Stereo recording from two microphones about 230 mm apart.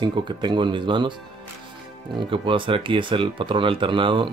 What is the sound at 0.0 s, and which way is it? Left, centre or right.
Speech, centre.